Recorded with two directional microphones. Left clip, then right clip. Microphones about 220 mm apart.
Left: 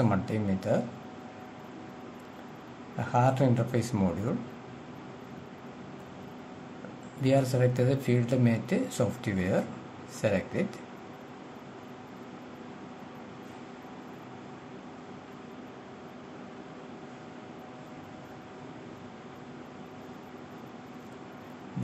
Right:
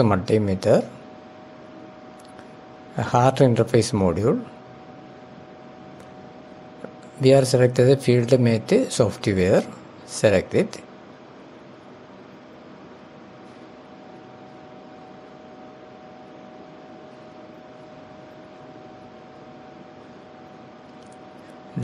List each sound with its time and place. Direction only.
0.0 s speech: 35° right (ahead or behind)
3.0 s speech: 35° right (ahead or behind)
7.2 s speech: 35° right (ahead or behind)